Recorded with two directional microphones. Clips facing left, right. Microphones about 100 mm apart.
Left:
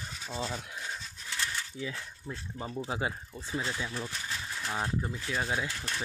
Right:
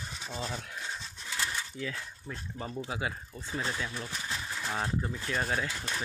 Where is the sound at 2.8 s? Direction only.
30° left (ahead or behind).